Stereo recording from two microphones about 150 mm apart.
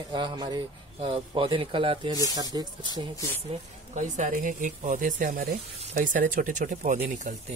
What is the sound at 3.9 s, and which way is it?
Speech, 60° right (ahead or behind).